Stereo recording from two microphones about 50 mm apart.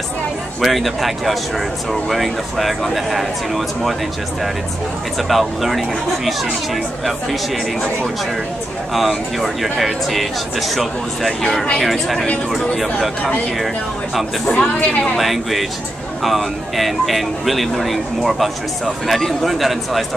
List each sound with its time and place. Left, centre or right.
0.6 s speech: centre
5.3 s speech: centre
8.9 s speech: centre
14.4 s speech: centre
15.1 s speech: centre